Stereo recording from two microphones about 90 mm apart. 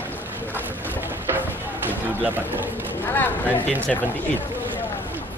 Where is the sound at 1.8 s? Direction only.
20° right (ahead or behind).